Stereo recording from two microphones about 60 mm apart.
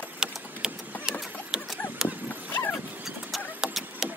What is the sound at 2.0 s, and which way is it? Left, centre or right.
Dog, left.